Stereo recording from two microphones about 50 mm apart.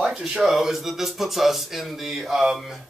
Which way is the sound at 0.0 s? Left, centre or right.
Centre.